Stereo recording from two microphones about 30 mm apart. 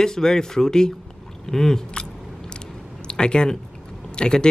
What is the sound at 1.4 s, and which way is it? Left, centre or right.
Speech, centre.